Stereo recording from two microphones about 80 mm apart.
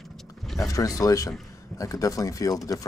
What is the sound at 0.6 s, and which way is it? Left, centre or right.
Speech, left.